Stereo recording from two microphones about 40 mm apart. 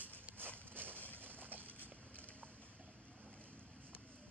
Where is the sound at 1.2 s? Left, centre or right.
Right.